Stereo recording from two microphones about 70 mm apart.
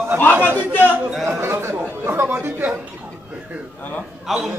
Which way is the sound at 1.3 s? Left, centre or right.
Right.